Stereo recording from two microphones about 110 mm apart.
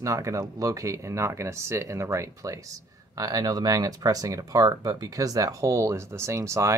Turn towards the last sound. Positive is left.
turn(degrees=-25)  # may be behind; listen again after turning